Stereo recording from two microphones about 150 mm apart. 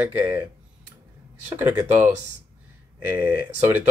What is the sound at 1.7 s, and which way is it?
Speech, 10° right (ahead or behind).